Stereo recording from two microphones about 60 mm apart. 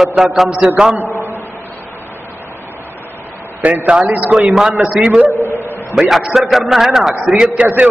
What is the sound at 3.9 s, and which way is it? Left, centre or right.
A man's voice, centre.